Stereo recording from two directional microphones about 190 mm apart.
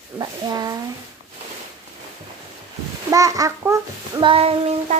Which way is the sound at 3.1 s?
15° right (ahead or behind).